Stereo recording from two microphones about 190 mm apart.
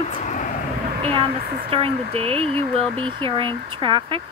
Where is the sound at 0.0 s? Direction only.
40° left (ahead or behind).